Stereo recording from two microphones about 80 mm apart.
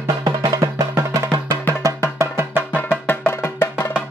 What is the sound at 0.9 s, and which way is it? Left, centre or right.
Music, right.